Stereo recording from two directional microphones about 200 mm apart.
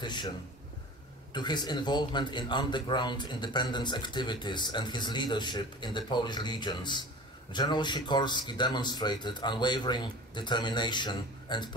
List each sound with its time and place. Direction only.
0.0 s speech: 20° left (ahead or behind)
1.3 s speech: 20° left (ahead or behind)